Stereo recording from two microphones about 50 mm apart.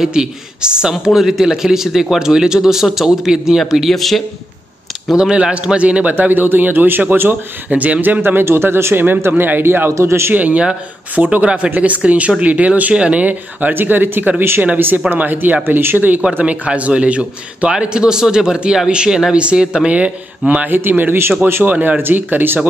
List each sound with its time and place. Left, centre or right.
0.0 s a man's voice: centre
3.9 s a man's voice: centre
5.1 s a man's voice: centre; by 8.9 s right
8.9 s a man's voice: right
9.9 s a man's voice: right
10.3 s a man's voice: right
13.7 s a man's voice: right
16.3 s a man's voice: right
19.9 s a man's voice: right
20.7 s a man's voice: right